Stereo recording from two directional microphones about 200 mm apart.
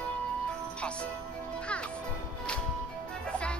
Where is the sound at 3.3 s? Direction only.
5° left (ahead or behind).